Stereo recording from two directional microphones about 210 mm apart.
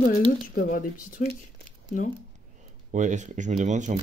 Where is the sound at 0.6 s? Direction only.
40° left (ahead or behind).